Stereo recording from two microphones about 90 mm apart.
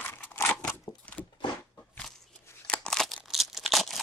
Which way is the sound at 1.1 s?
15° left (ahead or behind).